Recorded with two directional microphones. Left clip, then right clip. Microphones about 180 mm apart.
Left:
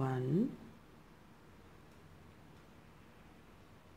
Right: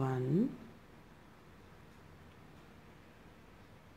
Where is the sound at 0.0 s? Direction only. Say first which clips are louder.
Right 1 dB; centre (ahead or behind).